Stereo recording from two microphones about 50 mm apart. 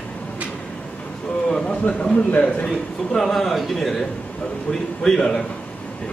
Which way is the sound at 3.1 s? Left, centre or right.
Centre.